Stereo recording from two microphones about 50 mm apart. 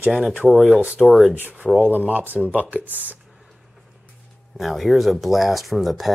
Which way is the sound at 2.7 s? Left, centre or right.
Right.